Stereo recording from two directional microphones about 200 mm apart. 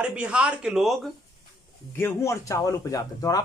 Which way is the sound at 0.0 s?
5° right (ahead or behind).